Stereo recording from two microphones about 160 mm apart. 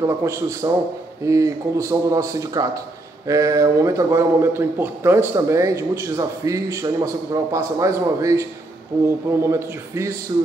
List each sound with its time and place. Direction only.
0.0 s a man's voice: 20° right (ahead or behind)